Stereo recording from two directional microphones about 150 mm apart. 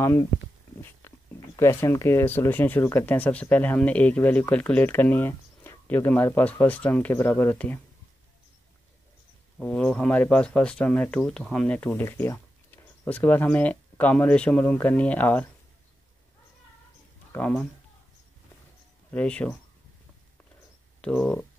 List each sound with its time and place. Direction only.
0.0 s speech: 20° left (ahead or behind)
1.6 s speech: 20° left (ahead or behind)
9.6 s speech: 10° left (ahead or behind)
17.3 s speech: 10° left (ahead or behind)
19.0 s speech: 10° left (ahead or behind)
21.0 s speech: 5° left (ahead or behind)